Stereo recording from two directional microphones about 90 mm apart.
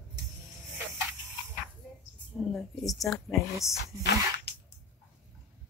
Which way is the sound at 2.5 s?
Centre (ahead or behind).